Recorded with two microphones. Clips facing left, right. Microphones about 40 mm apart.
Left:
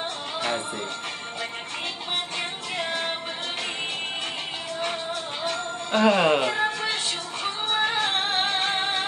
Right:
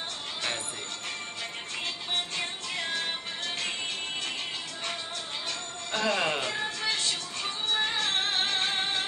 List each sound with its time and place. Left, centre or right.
2.3 s music: centre
5.4 s music: centre